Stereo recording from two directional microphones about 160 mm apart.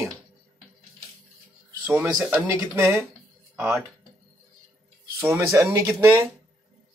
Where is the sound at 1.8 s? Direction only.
15° right (ahead or behind).